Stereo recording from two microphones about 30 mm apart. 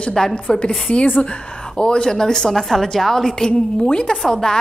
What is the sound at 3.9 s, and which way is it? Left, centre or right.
Speech, left.